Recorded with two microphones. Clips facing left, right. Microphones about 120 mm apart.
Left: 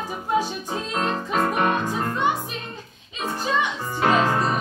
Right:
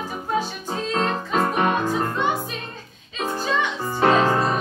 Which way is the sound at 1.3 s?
20° right (ahead or behind).